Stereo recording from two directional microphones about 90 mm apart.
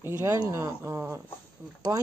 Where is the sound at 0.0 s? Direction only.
30° right (ahead or behind).